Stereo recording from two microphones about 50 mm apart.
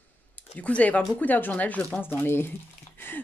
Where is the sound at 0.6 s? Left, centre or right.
Left.